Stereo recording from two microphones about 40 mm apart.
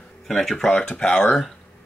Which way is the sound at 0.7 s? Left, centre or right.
Left.